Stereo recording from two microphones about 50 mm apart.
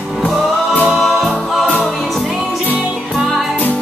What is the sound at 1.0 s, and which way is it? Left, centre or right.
Music, centre.